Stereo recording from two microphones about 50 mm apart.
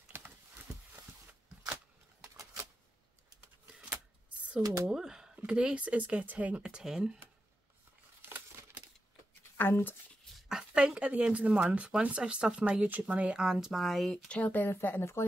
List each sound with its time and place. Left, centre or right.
0.1 s a sound: right
4.8 s a sound: centre
5.5 s speech: centre
6.6 s speech: centre
9.6 s speech: left
10.7 s speech: right
13.4 s speech: centre
14.3 s speech: left
14.7 s speech: left